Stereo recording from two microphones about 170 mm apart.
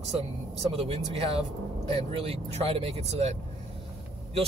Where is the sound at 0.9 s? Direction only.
35° right (ahead or behind).